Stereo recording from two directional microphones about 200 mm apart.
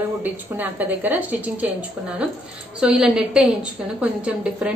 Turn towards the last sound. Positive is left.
turn(degrees=-5)  # may be behind; listen again after turning